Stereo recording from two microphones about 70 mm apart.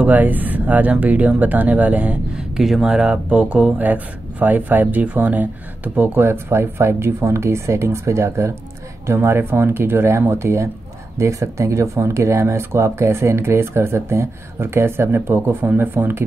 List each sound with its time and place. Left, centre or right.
0.0 s speech: right
3.8 s speech: right